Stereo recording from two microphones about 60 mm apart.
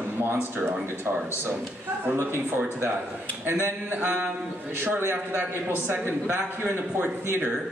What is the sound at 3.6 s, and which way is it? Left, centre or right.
A man's voice, right.